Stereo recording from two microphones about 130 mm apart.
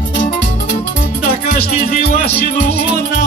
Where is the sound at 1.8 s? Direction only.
90° left.